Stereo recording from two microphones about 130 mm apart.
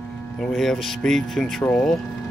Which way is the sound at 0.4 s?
Centre (ahead or behind).